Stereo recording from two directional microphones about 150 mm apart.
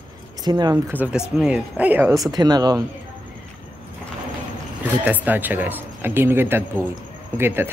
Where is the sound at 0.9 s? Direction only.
10° right (ahead or behind); by 2.8 s 25° right (ahead or behind).